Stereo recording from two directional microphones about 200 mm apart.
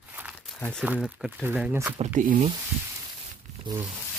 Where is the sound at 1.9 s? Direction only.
35° right (ahead or behind).